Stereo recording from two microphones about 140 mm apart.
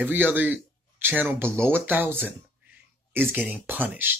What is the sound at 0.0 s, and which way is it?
Speech, 15° right (ahead or behind).